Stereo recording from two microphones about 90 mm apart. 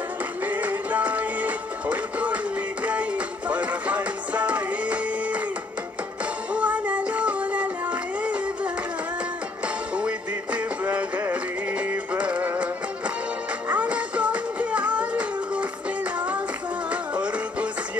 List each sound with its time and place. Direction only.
0.4 s music: 20° right (ahead or behind)
6.5 s music: 15° right (ahead or behind)
9.9 s music: 15° right (ahead or behind)